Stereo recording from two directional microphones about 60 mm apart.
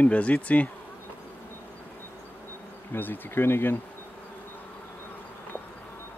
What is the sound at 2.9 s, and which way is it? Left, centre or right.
Speech, left.